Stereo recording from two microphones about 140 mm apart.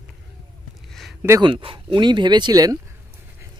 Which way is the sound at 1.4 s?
40° right (ahead or behind).